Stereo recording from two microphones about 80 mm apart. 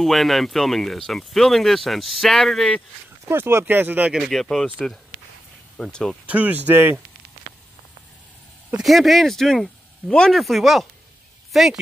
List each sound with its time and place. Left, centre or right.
0.0 s speech: centre
3.3 s speech: right
4.1 s speech: centre
5.8 s speech: centre
6.2 s speech: right
8.8 s speech: centre